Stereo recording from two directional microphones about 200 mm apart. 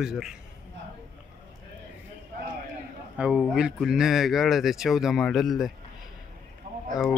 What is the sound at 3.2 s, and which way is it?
Speech, 5° right (ahead or behind).